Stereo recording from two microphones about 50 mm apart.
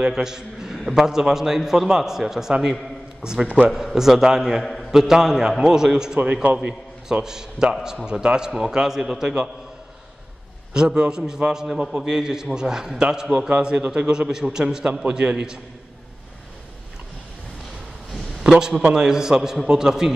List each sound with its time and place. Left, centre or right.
0.0 s a man's voice: centre
3.4 s a man's voice: right
3.7 s a man's voice: centre
6.4 s a man's voice: right
7.2 s a man's voice: centre
10.7 s a man's voice: centre
18.4 s a man's voice: centre